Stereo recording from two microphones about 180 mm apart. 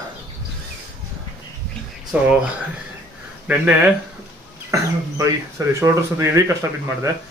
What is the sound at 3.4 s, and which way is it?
Speech, 5° right (ahead or behind).